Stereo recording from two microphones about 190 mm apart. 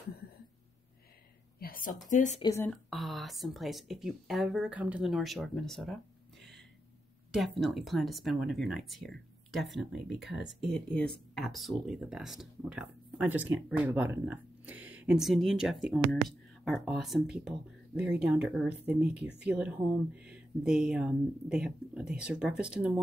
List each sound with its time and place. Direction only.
1.6 s a sound: 45° left (ahead or behind)
2.0 s a woman's voice: 40° left (ahead or behind)
2.4 s speech: 15° left (ahead or behind)
2.7 s speech: centre (ahead or behind)
7.3 s speech: centre (ahead or behind)